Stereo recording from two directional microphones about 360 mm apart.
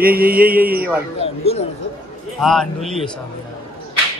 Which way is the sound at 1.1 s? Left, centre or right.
Centre.